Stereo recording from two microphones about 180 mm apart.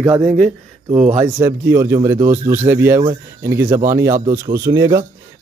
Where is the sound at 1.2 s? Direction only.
15° right (ahead or behind).